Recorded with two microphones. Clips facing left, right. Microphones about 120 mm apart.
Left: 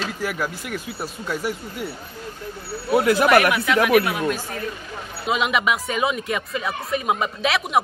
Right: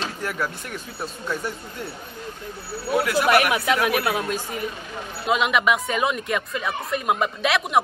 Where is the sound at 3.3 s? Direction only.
25° right (ahead or behind).